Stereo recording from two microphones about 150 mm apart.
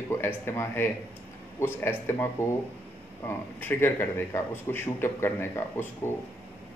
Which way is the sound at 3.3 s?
15° left (ahead or behind).